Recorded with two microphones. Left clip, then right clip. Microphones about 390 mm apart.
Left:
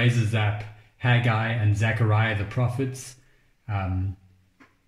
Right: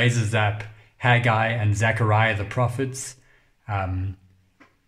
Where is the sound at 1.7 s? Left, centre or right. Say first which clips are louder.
Right 5 dB; centre.